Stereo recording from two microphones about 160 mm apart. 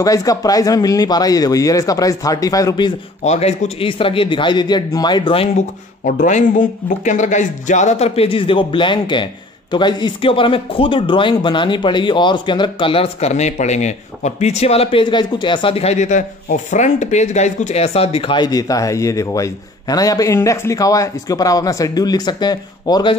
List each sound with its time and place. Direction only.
0.0 s speech: 20° left (ahead or behind)
3.3 s speech: 40° left (ahead or behind)
6.2 s speech: 50° left (ahead or behind); by 23.1 s 25° left (ahead or behind)